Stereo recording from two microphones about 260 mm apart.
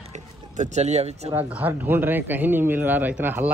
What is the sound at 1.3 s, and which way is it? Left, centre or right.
A man's voice, centre.